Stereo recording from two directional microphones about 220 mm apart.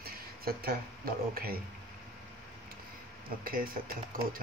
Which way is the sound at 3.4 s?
40° right (ahead or behind).